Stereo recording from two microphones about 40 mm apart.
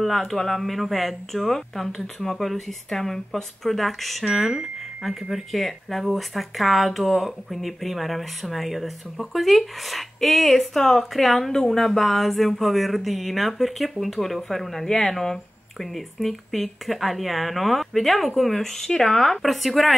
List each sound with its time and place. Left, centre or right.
0.0 s speech: centre
5.3 s speech: centre
14.9 s speech: centre
15.8 s speech: centre